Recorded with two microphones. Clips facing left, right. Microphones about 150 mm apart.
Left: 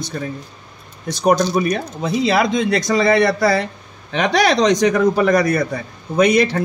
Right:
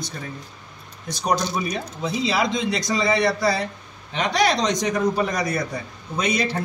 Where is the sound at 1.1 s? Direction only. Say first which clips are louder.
Left 8 dB; 60° left (ahead or behind).